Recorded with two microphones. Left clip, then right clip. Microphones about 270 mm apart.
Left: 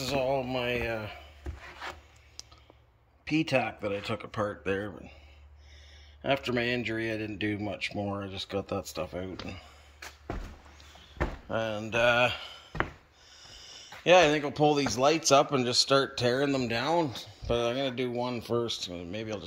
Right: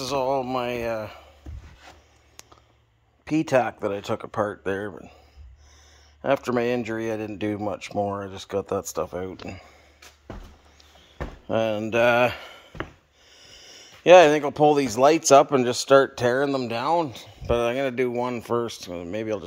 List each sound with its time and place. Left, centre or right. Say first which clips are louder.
0.0 s speech: right 5 dB; centre
3.3 s speech: right 6 dB; centre
6.2 s speech: right 6 dB; centre
11.4 s speech: right 10 dB; right
13.7 s speech: right 8 dB; right